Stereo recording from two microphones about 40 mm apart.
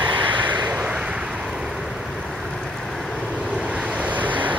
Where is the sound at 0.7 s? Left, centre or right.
Right.